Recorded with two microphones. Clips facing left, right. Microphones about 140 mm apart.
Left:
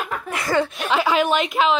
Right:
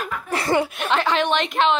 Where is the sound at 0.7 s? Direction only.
Centre (ahead or behind).